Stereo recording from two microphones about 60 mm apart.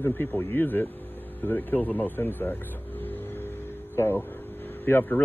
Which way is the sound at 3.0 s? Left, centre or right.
Left.